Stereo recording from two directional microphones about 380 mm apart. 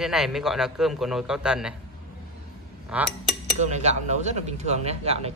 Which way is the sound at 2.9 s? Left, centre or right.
Centre.